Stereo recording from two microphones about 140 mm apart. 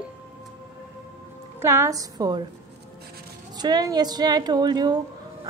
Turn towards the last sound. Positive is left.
turn(degrees=-30)  # may be behind; listen again after turning